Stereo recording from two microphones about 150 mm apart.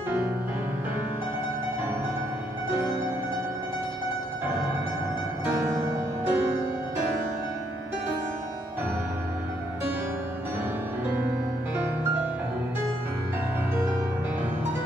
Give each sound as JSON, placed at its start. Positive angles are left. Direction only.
{"t": 5.4, "sound": "music", "side_deg": -15}